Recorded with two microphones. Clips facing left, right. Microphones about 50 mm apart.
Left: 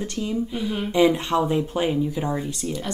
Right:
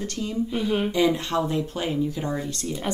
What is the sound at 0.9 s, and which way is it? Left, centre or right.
Speech, centre.